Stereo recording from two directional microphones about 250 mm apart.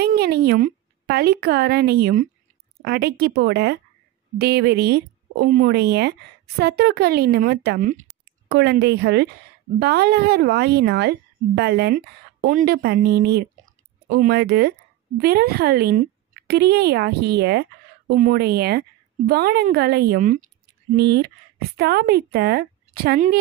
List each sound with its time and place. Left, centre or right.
0.0 s a woman's voice: right